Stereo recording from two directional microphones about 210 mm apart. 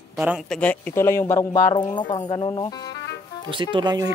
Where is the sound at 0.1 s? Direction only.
5° right (ahead or behind); by 3.0 s 20° left (ahead or behind).